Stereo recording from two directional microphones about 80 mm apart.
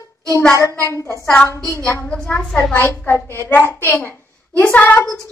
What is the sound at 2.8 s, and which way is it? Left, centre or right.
A woman's voice, left.